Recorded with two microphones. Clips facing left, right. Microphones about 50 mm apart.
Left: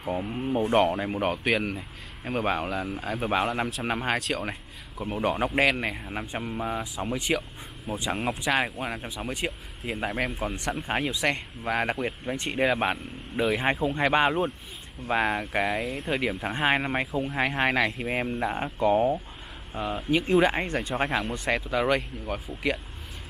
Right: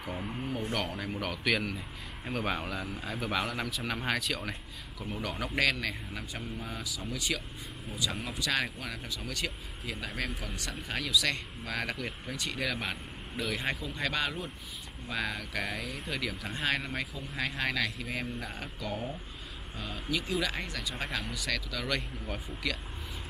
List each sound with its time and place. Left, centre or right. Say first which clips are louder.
0.0 s speech: left 7 dB; centre
0.5 s a man's voice: left 13 dB; left
21.9 s speech: left 7 dB; centre